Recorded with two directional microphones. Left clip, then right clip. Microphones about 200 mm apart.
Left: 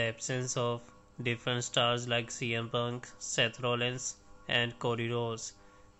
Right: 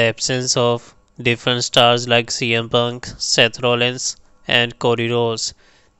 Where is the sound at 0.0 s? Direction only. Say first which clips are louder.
Right 16 dB; 45° right (ahead or behind).